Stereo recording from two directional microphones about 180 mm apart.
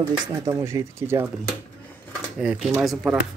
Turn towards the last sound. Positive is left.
turn(degrees=0)  # may be behind; listen again after turning